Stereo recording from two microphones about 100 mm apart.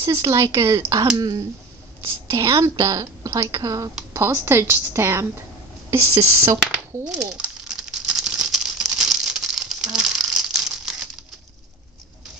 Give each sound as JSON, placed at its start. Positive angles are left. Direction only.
{"t": 0.0, "sound": "a woman's voice", "side_deg": -35}
{"t": 7.1, "sound": "crumpling", "side_deg": -10}